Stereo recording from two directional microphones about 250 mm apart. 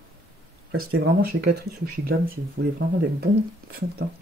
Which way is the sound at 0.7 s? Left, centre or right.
Right.